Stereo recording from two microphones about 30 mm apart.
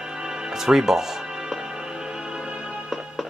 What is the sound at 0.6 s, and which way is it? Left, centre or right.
Speech, centre.